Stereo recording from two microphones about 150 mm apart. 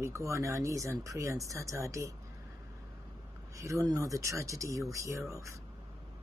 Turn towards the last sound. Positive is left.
turn(degrees=-20)  # may be behind; listen again after turning